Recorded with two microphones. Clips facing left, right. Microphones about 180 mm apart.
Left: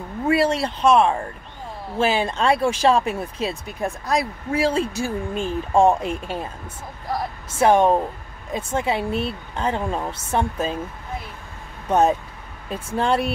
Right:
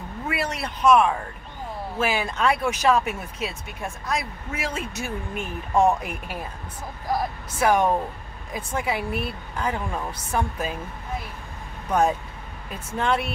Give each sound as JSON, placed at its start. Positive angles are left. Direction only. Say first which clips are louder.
{"t": 0.3, "sound": "speech", "louder": "left 10 dB", "side_deg": 30}
{"t": 7.5, "sound": "speech", "louder": "left 4 dB", "side_deg": 25}
{"t": 11.9, "sound": "speech", "louder": "left 4 dB", "side_deg": 25}